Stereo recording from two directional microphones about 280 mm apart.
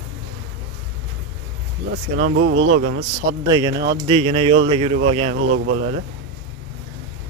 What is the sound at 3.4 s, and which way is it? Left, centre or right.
Speech, centre.